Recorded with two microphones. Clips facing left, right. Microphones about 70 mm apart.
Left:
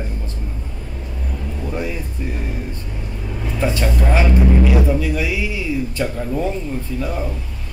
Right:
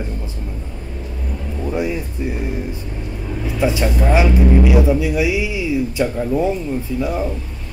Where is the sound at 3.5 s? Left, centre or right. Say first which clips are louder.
Right 2 dB; centre.